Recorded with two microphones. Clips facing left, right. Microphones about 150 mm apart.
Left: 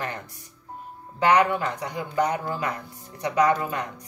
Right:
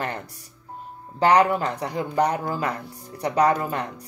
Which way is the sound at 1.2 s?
35° right (ahead or behind).